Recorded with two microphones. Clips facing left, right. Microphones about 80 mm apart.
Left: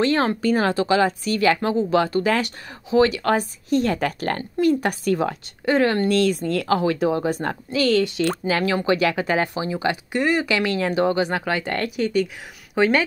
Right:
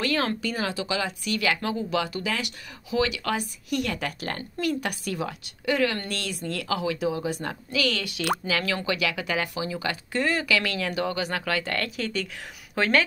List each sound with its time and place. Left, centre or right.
0.0 s speech: left
0.4 s speech: left
4.6 s speech: left
5.0 s a woman's voice: left; by 13.0 s centre